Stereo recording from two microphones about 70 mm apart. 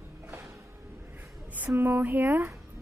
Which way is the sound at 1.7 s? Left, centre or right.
Right.